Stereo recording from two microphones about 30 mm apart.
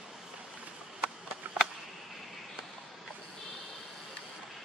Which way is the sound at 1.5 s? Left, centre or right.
Right.